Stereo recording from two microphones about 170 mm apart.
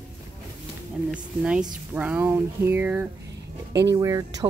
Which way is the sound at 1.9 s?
10° right (ahead or behind).